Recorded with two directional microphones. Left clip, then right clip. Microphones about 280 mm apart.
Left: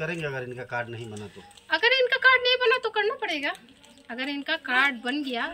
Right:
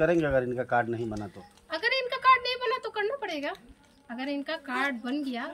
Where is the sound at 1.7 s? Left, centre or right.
Centre.